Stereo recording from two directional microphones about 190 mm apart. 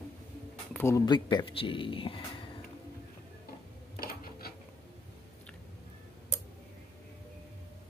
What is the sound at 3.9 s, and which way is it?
Rub, 50° left (ahead or behind).